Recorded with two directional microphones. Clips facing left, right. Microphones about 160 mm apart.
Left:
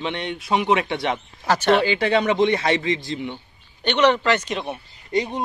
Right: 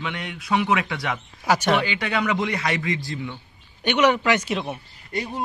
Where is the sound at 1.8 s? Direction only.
30° left (ahead or behind).